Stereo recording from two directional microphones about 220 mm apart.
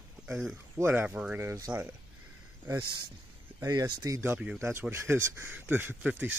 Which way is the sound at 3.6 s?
15° right (ahead or behind).